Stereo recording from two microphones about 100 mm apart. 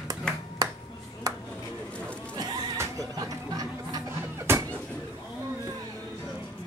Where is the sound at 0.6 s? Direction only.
40° right (ahead or behind).